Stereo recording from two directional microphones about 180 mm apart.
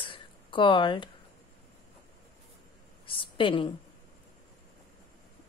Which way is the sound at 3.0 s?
30° left (ahead or behind).